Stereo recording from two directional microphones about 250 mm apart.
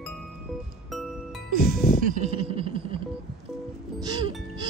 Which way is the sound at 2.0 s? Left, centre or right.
Right.